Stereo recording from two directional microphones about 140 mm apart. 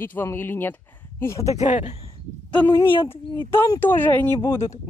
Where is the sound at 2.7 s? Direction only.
35° left (ahead or behind).